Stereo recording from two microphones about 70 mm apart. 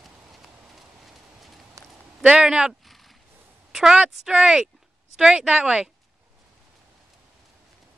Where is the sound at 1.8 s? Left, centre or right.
Right.